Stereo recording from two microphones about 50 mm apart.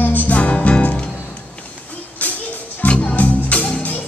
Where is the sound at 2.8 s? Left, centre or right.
Left.